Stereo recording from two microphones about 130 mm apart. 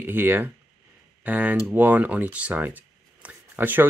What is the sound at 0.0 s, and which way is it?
Speech, 15° right (ahead or behind).